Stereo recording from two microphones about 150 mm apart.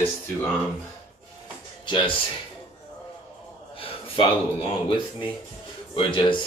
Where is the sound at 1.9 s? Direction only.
30° left (ahead or behind).